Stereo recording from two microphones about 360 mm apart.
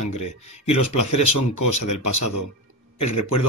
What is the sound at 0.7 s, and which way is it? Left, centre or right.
Speech, left.